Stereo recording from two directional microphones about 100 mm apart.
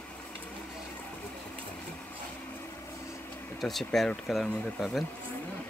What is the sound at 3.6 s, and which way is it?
Speech, centre (ahead or behind).